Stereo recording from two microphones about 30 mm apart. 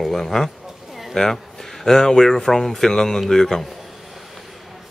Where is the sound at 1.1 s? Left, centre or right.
Left.